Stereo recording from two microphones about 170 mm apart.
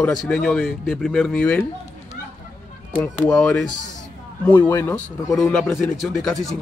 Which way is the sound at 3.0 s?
5° left (ahead or behind).